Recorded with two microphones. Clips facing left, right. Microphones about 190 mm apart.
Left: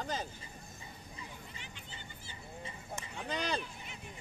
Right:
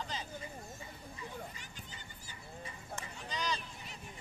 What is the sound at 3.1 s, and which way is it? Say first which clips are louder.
Speech: left 3 dB; 60° left (ahead or behind).